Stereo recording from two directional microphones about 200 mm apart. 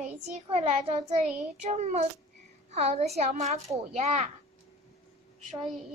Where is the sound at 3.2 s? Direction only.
35° right (ahead or behind).